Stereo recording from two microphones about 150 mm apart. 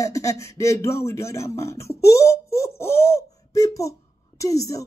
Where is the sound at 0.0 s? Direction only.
20° left (ahead or behind).